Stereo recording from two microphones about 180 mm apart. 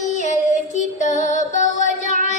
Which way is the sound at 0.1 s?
40° left (ahead or behind).